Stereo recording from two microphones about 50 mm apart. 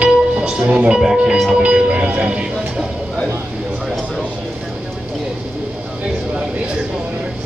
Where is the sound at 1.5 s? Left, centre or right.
Centre.